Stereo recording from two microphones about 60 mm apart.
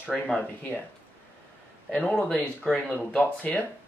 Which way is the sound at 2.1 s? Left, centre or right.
Centre.